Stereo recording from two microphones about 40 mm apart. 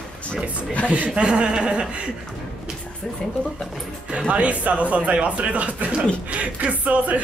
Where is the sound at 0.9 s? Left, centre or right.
Right.